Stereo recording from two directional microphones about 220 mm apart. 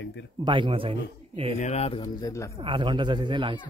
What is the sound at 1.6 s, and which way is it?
Speech, 30° left (ahead or behind).